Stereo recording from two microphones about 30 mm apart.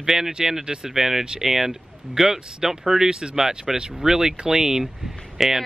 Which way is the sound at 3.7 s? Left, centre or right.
Centre.